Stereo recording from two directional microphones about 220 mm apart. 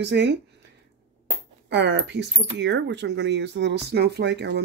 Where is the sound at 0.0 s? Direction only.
50° right (ahead or behind).